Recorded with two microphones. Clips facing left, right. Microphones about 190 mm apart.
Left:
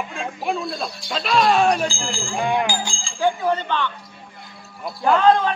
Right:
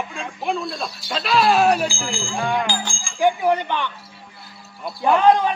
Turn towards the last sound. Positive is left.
turn(degrees=-15)  # may be behind; listen again after turning